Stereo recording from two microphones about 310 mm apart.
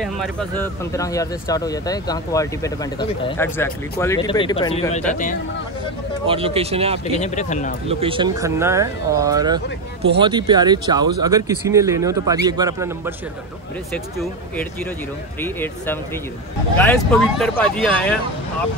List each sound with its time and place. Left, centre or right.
0.0 s speech: centre; by 5.4 s left
6.2 s a man's voice: centre
7.1 s speech: left
7.9 s speech: centre
15.4 s speech: centre